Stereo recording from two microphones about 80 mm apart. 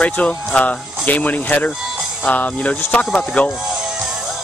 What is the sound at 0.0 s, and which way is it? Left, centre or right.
Speech, centre.